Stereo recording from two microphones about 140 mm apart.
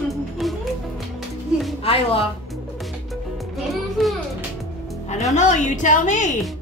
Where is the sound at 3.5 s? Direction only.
Centre (ahead or behind).